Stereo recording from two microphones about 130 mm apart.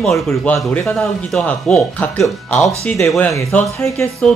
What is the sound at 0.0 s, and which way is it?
Speech, centre (ahead or behind).